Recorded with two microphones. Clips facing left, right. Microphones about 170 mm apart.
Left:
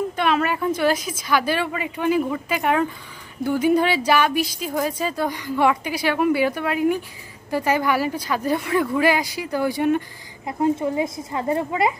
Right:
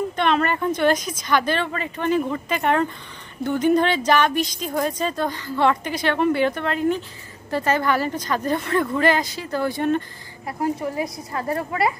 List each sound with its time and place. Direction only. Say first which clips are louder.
0.1 s a woman's voice: even; 5° left (ahead or behind)
10.6 s a woman's voice: left 4 dB; 20° left (ahead or behind)